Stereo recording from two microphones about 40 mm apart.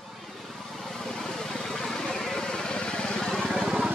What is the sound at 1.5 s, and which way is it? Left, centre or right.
Vehicle, centre.